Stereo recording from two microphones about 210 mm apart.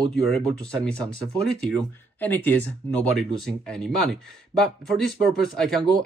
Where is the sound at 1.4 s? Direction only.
5° left (ahead or behind).